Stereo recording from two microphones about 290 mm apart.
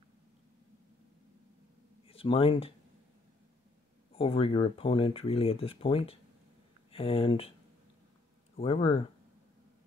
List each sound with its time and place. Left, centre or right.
2.0 s speech: centre
4.1 s speech: centre
8.5 s speech: centre